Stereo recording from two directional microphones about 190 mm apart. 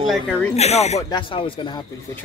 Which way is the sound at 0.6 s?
35° left (ahead or behind).